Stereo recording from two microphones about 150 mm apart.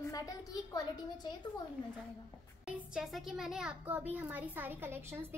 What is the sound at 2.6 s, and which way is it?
A child's voice, 5° right (ahead or behind).